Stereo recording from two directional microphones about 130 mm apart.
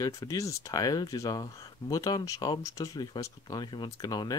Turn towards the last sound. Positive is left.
turn(degrees=30)  # may be behind; listen again after turning